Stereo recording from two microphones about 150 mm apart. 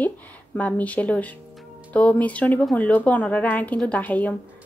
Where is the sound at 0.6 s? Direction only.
10° left (ahead or behind).